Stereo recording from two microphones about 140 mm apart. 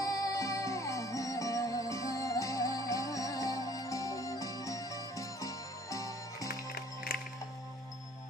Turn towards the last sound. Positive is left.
turn(degrees=90)